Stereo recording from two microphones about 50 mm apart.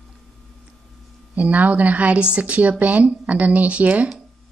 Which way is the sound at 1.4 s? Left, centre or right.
Right.